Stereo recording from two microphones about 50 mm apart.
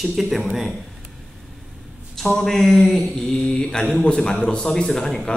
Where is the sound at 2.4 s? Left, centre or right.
Centre.